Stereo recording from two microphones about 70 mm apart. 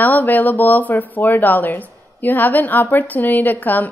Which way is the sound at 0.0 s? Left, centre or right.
Left.